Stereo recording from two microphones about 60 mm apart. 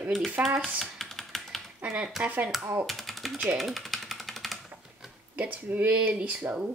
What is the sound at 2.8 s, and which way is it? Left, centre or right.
Typing, centre.